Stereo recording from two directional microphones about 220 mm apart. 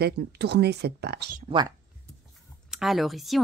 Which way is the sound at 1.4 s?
20° right (ahead or behind).